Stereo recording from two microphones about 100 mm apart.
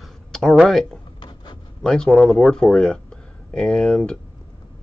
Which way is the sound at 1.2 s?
45° left (ahead or behind).